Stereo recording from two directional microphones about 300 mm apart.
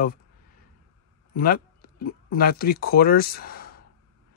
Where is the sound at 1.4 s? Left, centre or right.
Left.